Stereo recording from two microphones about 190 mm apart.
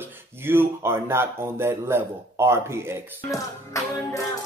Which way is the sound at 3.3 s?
15° left (ahead or behind).